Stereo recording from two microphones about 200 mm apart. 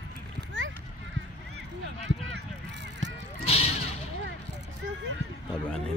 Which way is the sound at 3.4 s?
30° left (ahead or behind).